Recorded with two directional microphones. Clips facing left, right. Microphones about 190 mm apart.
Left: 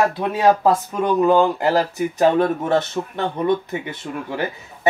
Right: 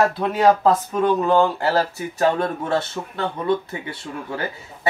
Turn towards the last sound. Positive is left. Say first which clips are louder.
# left 4 dB
turn(degrees=20)  # may be behind; listen again after turning